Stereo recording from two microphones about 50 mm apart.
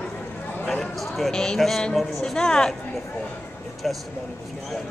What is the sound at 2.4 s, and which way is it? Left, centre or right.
Speech, centre.